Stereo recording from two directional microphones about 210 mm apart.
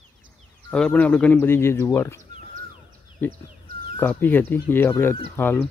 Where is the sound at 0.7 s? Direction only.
5° left (ahead or behind).